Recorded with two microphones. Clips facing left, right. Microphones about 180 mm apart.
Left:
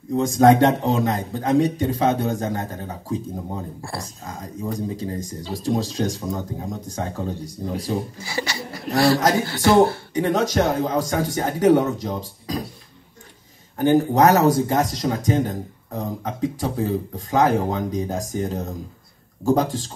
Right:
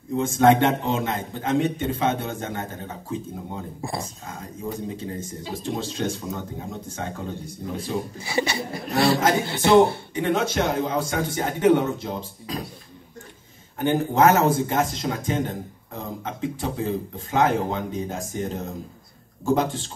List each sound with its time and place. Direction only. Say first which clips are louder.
0.1 s a man's voice: left 3 dB; 35° left (ahead or behind)
3.8 s speech: right 2 dB; 20° right (ahead or behind)
4.2 s a man's voice: left 3 dB; 35° left (ahead or behind)
8.2 s speech: right 3 dB; 20° right (ahead or behind)
10.1 s a man's voice: left 4 dB; 40° left (ahead or behind)
13.7 s a man's voice: left 4 dB; 40° left (ahead or behind)